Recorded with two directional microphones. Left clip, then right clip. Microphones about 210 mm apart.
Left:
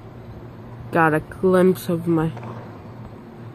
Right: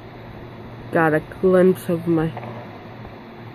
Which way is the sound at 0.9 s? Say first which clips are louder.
Even; 15° left (ahead or behind).